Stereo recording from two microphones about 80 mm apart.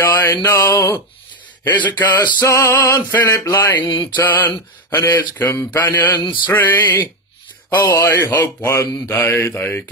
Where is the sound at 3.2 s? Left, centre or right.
Left.